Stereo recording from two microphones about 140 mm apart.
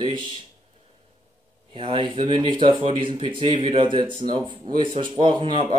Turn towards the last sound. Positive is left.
turn(degrees=-35)  # may be behind; listen again after turning